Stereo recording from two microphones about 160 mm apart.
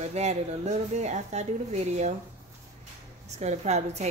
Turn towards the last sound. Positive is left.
turn(degrees=-45)  # may be behind; listen again after turning